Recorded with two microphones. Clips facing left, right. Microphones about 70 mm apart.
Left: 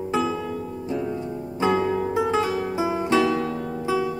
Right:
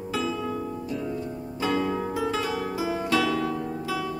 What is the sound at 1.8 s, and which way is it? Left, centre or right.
Music, centre.